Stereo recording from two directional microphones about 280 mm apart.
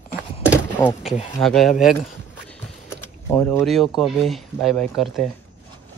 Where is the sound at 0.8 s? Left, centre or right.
Centre.